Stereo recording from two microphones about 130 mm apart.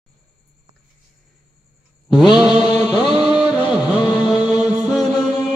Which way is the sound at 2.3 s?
5° right (ahead or behind).